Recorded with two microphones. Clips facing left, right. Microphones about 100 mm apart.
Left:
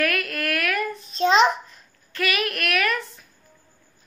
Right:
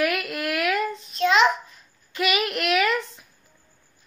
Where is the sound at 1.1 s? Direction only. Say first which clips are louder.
Left 1 dB; 30° left (ahead or behind).